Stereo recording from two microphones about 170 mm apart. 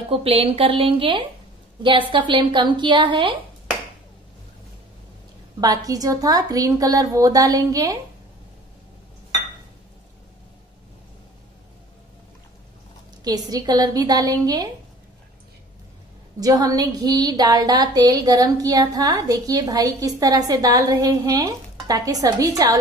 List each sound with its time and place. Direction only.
0.1 s a woman's voice: 35° right (ahead or behind)
5.6 s a woman's voice: 20° right (ahead or behind)
13.2 s a woman's voice: 20° right (ahead or behind)
16.3 s a woman's voice: 20° right (ahead or behind)